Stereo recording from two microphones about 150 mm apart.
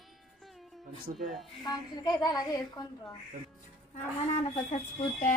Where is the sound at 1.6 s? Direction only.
25° left (ahead or behind).